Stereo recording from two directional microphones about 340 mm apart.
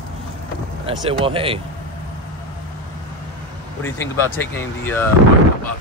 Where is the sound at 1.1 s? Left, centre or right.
Centre.